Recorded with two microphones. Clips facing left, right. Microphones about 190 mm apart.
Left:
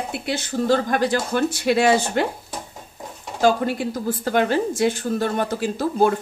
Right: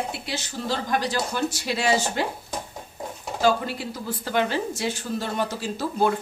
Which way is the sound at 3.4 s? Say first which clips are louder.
Left 4 dB; 50° left (ahead or behind).